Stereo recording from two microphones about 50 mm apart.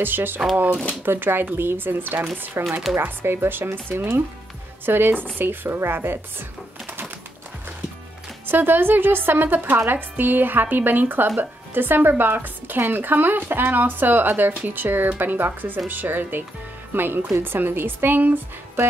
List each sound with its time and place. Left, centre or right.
0.0 s speech: right
8.5 s speech: right